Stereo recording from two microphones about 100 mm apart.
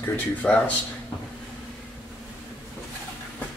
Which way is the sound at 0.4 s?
10° left (ahead or behind).